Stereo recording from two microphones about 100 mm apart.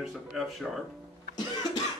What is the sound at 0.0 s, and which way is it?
Speech, centre (ahead or behind).